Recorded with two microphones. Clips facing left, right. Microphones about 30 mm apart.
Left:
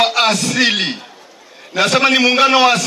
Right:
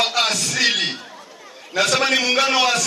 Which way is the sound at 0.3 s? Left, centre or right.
Centre.